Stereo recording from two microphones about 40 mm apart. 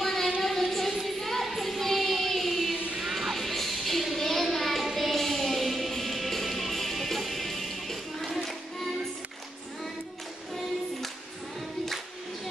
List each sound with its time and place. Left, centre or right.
0.0 s a sound: centre
0.4 s child singing: centre
3.0 s music: centre